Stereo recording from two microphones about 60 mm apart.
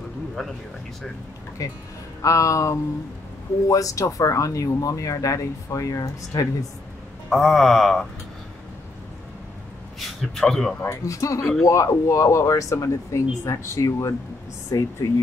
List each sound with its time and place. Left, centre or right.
1.6 s speech: left
2.2 s speech: left
7.2 s speech: centre
9.9 s a man's voice: centre
10.8 s speech: left